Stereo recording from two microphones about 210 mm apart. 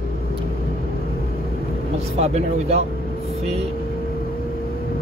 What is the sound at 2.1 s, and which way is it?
Speech, 30° right (ahead or behind).